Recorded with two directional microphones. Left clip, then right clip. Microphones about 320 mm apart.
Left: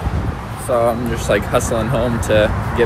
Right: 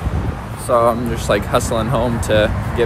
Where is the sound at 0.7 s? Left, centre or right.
Centre.